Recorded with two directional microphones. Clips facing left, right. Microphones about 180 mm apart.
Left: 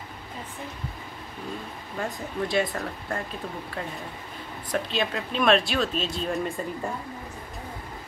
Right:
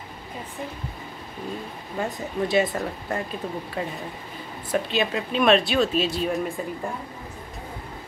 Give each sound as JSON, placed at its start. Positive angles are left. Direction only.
{"t": 2.0, "sound": "speech", "side_deg": 0}
{"t": 4.7, "sound": "speech", "side_deg": -5}